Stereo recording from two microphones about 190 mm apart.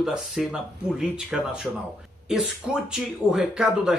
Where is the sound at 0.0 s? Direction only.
5° right (ahead or behind).